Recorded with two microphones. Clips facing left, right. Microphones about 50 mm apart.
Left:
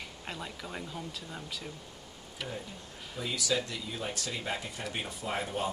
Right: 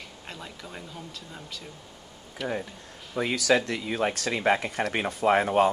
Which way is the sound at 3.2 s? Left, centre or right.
Right.